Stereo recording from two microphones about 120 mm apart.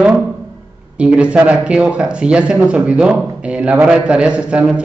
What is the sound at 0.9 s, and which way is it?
Speech, 10° right (ahead or behind).